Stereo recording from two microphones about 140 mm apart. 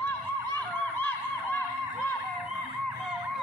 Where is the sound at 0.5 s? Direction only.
15° left (ahead or behind).